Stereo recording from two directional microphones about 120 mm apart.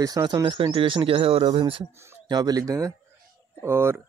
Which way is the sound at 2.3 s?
35° right (ahead or behind).